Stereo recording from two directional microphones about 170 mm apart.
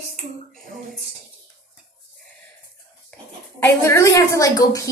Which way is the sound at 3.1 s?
15° left (ahead or behind).